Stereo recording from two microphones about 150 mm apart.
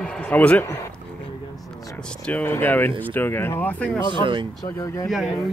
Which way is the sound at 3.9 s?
30° left (ahead or behind).